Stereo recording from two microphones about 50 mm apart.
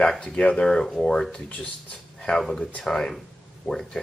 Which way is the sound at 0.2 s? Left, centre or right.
Left.